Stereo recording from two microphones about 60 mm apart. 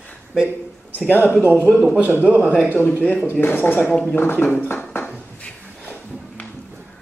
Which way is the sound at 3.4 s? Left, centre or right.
Left.